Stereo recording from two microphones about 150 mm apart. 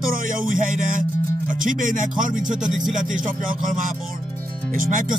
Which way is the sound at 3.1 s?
60° right (ahead or behind).